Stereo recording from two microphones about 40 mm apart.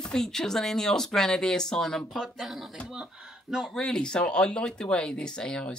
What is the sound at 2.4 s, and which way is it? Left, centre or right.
Speech, centre.